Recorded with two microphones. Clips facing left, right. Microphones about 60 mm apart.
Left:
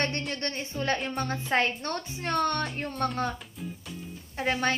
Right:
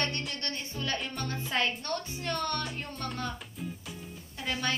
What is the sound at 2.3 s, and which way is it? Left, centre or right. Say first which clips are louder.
Speech: left 6 dB; left.